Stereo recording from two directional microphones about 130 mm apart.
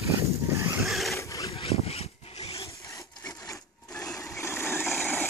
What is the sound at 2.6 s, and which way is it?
Wood, 25° left (ahead or behind).